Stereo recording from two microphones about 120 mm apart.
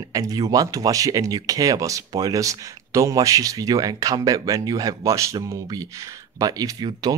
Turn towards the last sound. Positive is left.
turn(degrees=-35)  # may be behind; listen again after turning